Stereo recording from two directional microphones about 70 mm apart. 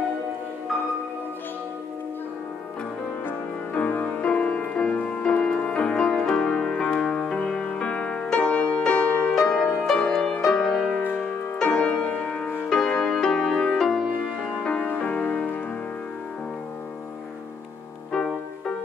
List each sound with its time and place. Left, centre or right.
3.3 s music: left
4.5 s music: centre